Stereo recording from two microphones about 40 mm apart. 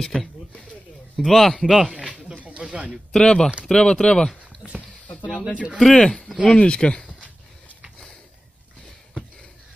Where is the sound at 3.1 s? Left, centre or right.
Centre.